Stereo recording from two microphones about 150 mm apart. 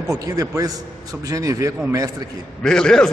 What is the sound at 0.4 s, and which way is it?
A man's voice, 25° right (ahead or behind).